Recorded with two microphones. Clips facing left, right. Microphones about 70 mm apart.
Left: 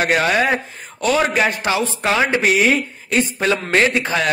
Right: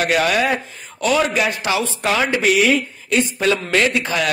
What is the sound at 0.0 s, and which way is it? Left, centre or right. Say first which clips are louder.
A man's voice: left 1 dB; left.